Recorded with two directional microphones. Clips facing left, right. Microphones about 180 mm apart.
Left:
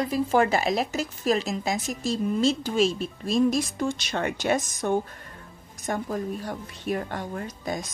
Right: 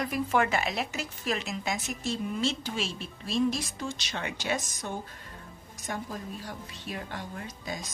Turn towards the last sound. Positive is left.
turn(degrees=55)  # may be behind; listen again after turning